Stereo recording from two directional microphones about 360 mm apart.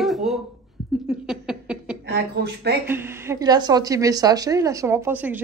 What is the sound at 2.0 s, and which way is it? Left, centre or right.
Speech, right.